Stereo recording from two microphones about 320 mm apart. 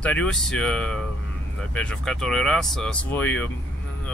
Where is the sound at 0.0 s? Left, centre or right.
Centre.